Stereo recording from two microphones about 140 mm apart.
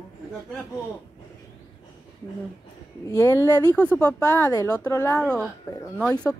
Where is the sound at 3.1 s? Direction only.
25° left (ahead or behind).